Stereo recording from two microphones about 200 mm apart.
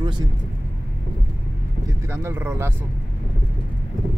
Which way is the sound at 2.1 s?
10° right (ahead or behind).